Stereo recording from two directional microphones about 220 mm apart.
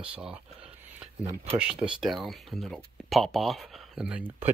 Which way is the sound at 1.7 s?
20° right (ahead or behind).